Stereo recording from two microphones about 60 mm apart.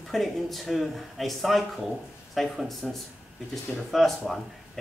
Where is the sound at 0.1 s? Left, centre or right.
Centre.